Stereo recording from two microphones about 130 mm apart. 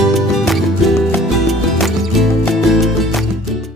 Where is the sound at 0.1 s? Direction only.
Centre (ahead or behind).